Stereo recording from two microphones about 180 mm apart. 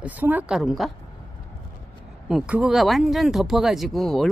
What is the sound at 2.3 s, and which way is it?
Speech, 5° right (ahead or behind).